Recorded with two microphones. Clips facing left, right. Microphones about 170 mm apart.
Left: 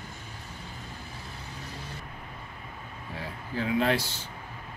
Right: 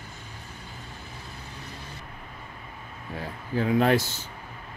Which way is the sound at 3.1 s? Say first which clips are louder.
Right 5 dB; 50° right (ahead or behind).